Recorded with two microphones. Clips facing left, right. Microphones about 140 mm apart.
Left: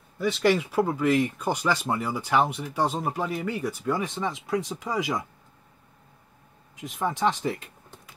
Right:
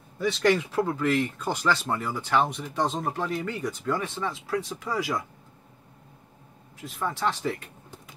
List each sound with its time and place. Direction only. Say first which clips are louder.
0.2 s speech: even; 5° left (ahead or behind)
6.8 s speech: left 3 dB; 15° left (ahead or behind)